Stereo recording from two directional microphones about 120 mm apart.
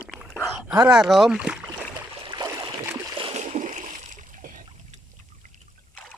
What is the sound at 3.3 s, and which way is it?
Splash, 70° right (ahead or behind).